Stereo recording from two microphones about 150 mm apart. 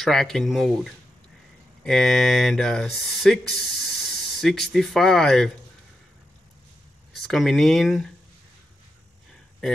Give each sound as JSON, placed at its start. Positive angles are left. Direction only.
{"t": 0.0, "sound": "speech", "side_deg": 5}
{"t": 7.2, "sound": "speech", "side_deg": 0}